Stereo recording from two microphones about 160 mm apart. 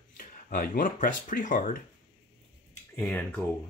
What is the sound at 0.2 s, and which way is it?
Speech, 60° left (ahead or behind).